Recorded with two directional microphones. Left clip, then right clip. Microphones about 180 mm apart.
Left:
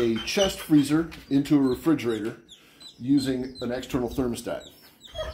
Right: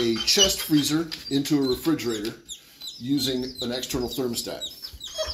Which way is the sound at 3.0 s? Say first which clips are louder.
Left 1 dB; 35° left (ahead or behind).